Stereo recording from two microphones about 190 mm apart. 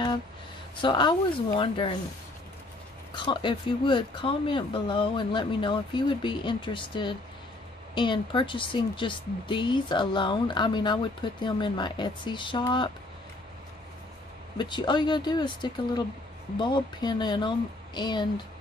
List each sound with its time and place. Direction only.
0.7 s speech: 25° left (ahead or behind)
3.1 s speech: 25° left (ahead or behind)
14.6 s speech: 25° left (ahead or behind)